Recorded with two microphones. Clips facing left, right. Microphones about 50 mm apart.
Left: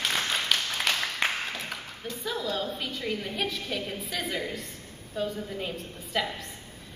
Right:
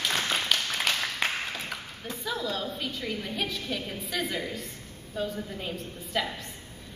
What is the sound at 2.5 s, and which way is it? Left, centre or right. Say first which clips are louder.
A woman's voice: left 1 dB; centre.